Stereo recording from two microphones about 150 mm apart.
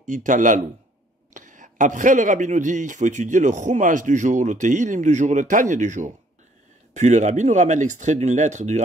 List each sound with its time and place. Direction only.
0.0 s a man's voice: 60° right (ahead or behind)